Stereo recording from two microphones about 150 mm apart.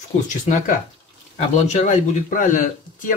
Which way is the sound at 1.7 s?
55° left (ahead or behind).